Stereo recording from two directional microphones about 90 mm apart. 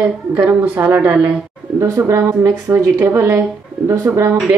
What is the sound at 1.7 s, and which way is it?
A woman's voice, 35° right (ahead or behind).